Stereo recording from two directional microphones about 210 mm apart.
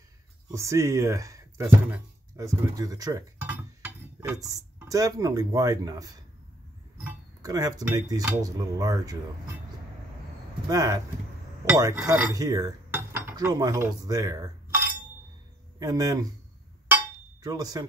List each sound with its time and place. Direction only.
0.5 s speech: 15° right (ahead or behind)
10.7 s speech: 15° right (ahead or behind)
11.6 s cutlery: 10° right (ahead or behind)
15.8 s speech: 15° right (ahead or behind)
16.8 s a sound: 10° right (ahead or behind)